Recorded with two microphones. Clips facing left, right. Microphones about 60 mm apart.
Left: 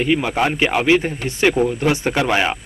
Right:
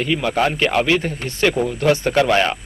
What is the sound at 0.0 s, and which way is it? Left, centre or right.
A man's voice, centre.